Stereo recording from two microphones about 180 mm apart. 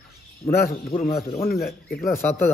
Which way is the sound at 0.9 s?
30° left (ahead or behind).